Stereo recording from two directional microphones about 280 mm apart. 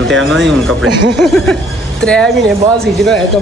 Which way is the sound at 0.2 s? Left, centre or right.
Centre.